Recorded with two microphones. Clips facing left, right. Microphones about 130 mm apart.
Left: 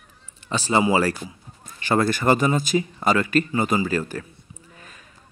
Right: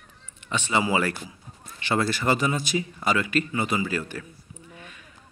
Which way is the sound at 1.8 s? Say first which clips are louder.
Left 4 dB; 45° left (ahead or behind).